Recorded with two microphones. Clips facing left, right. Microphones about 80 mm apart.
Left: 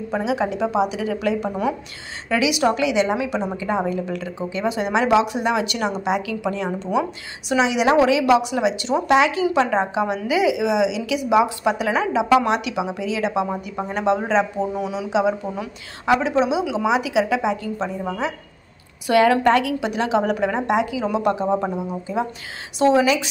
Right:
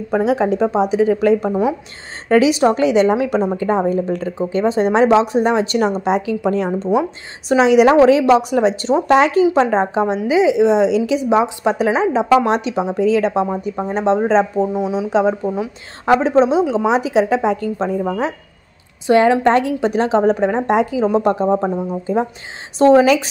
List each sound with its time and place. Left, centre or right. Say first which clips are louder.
0.1 s a woman's voice: right 7 dB; right
1.5 s a woman's voice: right 6 dB; right
2.2 s a woman's voice: right 6 dB; right
8.0 s speech: right 5 dB; right
19.0 s a woman's voice: right 3 dB; right
22.8 s a woman's voice: right 6 dB; right